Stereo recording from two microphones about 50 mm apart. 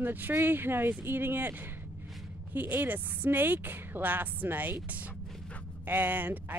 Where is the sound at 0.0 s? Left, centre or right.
Right.